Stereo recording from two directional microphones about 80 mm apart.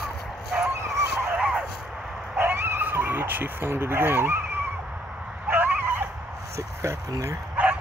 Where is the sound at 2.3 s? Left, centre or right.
Right.